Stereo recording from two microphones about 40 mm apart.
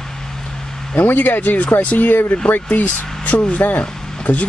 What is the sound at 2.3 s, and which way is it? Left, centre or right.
Speech, left.